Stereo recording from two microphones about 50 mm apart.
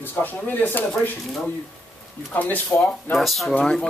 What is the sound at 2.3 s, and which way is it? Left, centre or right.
Speech, left.